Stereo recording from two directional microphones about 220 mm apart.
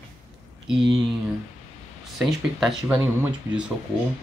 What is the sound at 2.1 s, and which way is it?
Speech, centre (ahead or behind).